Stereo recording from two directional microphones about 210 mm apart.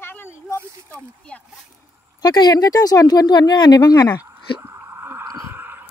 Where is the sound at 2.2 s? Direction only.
20° left (ahead or behind).